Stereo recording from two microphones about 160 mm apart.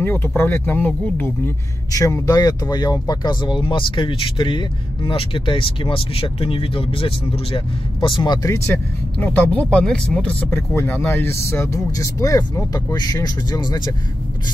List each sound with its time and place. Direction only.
0.0 s speech: 10° left (ahead or behind)
8.6 s speech: 10° left (ahead or behind)